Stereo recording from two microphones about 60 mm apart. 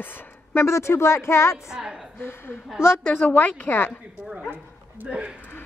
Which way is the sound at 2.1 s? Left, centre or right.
Left.